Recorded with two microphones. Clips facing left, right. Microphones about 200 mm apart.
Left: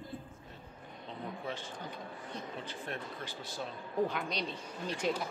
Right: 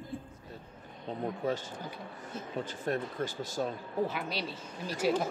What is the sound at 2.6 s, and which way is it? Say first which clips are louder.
Speech: right 13 dB; 40° right (ahead or behind).